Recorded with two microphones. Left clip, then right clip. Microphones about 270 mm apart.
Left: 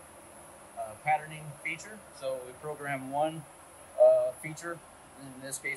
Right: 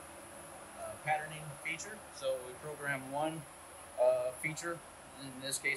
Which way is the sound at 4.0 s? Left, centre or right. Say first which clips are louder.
Left 8 dB; centre.